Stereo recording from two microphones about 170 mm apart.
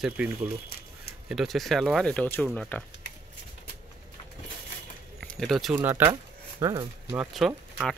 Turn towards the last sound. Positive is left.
turn(degrees=0)  # may be behind; listen again after turning